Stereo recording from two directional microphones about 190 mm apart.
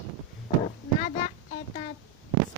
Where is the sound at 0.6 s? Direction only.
35° left (ahead or behind).